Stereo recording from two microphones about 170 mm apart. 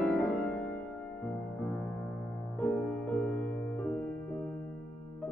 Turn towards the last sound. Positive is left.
turn(degrees=5)  # may be behind; listen again after turning